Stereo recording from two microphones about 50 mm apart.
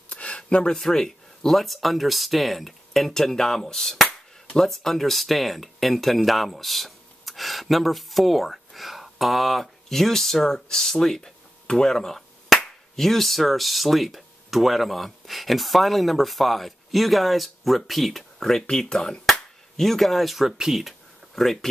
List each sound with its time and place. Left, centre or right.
0.1 s a sound: left
0.7 s speech: centre
20.4 s speech: centre
21.4 s speech: centre